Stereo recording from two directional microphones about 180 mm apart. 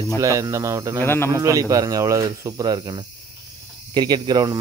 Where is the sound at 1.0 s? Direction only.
10° left (ahead or behind).